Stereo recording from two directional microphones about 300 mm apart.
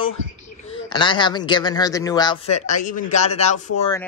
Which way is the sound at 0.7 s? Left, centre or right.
Centre.